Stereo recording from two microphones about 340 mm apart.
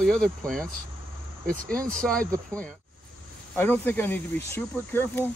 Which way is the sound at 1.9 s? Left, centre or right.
Centre.